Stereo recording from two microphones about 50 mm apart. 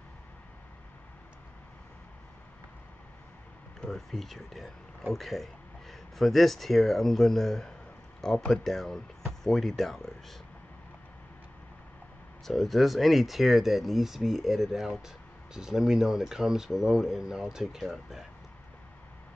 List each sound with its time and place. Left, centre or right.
3.8 s speech: centre
12.4 s speech: centre